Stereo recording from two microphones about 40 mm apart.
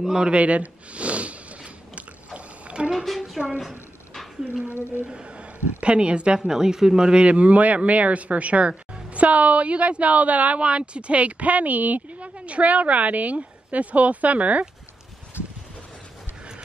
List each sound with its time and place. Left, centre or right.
0.2 s a sound: right
2.9 s a woman's voice: centre
3.3 s a man's voice: centre
5.1 s a man's voice: right
6.4 s a man's voice: centre
7.2 s speech: right
15.4 s a sound: left